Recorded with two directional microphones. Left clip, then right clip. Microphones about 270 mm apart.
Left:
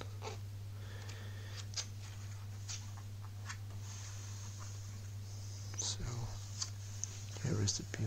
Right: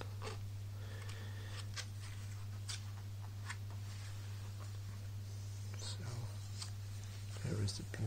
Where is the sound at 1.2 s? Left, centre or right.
Centre.